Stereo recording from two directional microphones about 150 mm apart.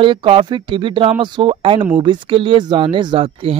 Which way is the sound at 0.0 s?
35° right (ahead or behind).